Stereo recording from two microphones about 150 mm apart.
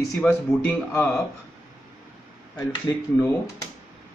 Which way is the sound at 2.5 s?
25° left (ahead or behind).